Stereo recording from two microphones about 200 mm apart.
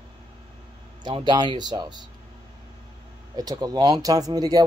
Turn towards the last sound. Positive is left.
turn(degrees=-20)  # may be behind; listen again after turning